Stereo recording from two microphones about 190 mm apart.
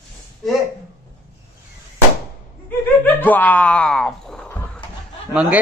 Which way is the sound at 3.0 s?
10° left (ahead or behind).